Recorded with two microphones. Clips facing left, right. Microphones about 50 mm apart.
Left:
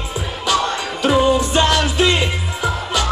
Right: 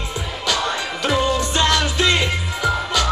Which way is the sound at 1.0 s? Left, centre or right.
Centre.